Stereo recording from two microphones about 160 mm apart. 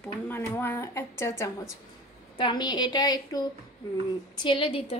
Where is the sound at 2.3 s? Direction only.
30° left (ahead or behind).